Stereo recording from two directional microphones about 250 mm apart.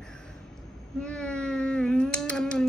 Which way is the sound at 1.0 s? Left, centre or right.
Centre.